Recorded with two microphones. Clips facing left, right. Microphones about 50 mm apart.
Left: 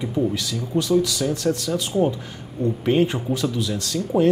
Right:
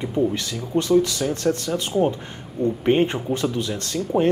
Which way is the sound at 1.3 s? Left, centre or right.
Right.